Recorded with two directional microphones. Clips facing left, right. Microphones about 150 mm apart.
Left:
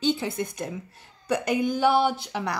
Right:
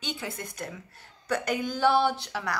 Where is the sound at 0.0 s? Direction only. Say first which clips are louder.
Left 10 dB; 25° left (ahead or behind).